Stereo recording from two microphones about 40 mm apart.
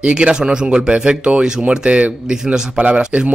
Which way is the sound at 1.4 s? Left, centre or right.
Centre.